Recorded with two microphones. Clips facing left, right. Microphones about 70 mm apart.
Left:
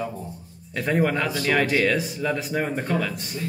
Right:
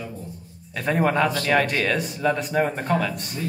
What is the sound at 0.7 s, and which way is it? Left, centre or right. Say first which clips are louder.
Speech: even; centre.